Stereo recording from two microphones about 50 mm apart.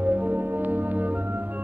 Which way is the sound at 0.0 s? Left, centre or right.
Right.